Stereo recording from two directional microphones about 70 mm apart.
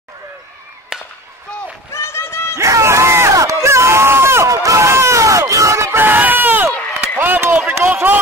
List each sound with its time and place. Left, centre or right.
1.9 s run: left
2.5 s crowd: right
6.0 s run: right
7.2 s a sound: right